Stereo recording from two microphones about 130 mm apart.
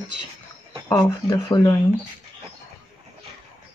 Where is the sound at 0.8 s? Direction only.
20° left (ahead or behind).